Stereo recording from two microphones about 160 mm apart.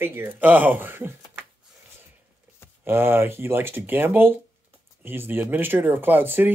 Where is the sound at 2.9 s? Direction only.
15° right (ahead or behind).